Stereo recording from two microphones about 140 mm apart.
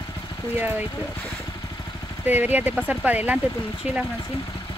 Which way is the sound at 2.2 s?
10° right (ahead or behind).